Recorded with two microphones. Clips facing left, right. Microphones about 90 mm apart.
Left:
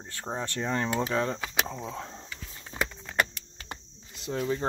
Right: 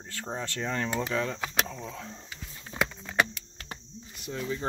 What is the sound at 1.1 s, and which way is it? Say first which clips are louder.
Speech: left 1 dB; 30° left (ahead or behind).